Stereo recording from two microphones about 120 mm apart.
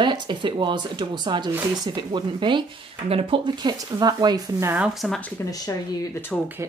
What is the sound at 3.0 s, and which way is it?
Speech, 50° right (ahead or behind).